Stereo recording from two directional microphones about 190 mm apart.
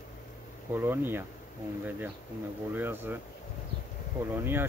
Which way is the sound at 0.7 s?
10° right (ahead or behind).